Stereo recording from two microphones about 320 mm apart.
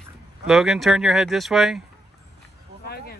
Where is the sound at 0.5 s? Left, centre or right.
Centre.